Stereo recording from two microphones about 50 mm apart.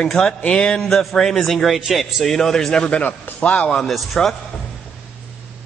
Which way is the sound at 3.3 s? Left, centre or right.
Left.